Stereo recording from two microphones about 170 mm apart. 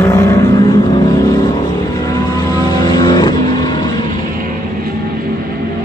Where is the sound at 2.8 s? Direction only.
25° left (ahead or behind).